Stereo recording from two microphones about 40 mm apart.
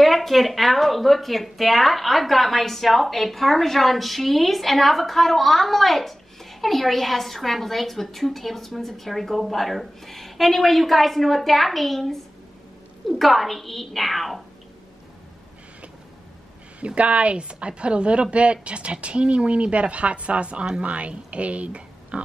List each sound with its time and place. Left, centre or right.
0.0 s speech: centre
13.2 s speech: centre
16.8 s a woman's voice: right